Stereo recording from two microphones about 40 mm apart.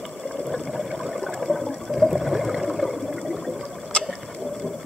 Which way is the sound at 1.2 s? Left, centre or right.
Centre.